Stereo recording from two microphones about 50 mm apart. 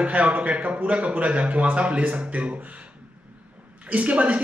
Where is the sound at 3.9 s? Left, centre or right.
Right.